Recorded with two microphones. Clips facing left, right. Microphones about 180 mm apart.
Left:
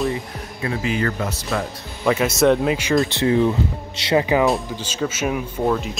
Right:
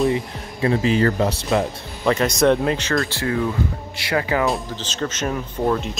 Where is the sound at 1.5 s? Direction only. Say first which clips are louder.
Right 4 dB; 20° right (ahead or behind).